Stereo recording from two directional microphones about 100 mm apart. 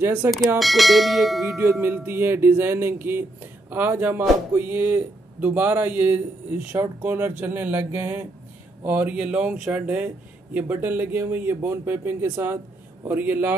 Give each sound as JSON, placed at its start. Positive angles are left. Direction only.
{"t": 0.0, "sound": "speech", "side_deg": -20}
{"t": 0.6, "sound": "bell", "side_deg": 0}
{"t": 1.6, "sound": "speech", "side_deg": -20}